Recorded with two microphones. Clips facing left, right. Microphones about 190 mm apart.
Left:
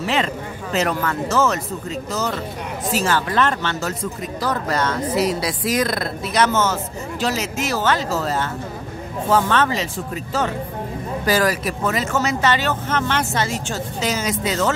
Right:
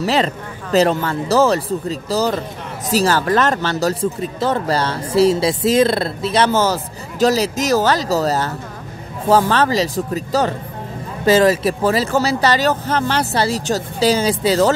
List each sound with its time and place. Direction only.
0.0 s speech: 35° right (ahead or behind)
11.2 s speech: 25° right (ahead or behind)